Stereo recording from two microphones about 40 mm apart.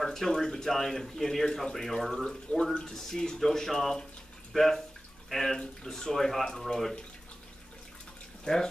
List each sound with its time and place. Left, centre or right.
0.0 s speech: centre
8.5 s speech: centre